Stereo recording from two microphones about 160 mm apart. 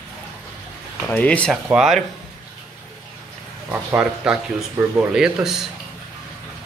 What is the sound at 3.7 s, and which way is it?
Speech, 5° right (ahead or behind).